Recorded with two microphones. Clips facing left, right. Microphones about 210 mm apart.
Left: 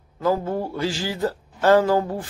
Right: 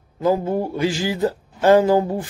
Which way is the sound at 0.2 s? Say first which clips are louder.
Right 3 dB; 20° right (ahead or behind).